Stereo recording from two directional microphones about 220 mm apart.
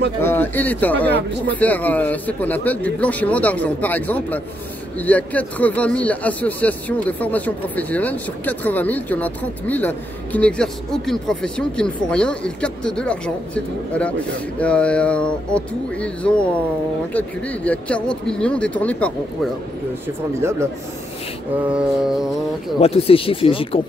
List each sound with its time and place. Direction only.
0.2 s speech: 10° left (ahead or behind)
14.6 s speech: 5° left (ahead or behind)
20.3 s speech: 10° right (ahead or behind)
21.6 s speech: 5° right (ahead or behind)
22.8 s speech: 25° left (ahead or behind)